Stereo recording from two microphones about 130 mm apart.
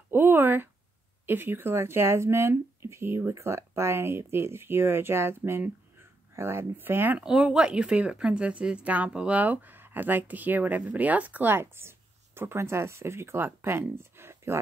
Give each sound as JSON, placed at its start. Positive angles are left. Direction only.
{"t": 0.1, "sound": "speech", "side_deg": -15}